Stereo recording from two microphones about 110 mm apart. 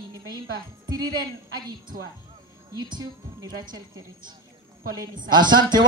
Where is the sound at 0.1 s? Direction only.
35° right (ahead or behind).